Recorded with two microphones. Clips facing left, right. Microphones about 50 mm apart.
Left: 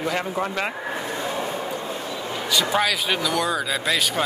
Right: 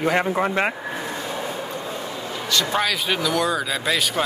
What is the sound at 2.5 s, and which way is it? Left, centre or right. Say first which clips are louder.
Speech: even; centre.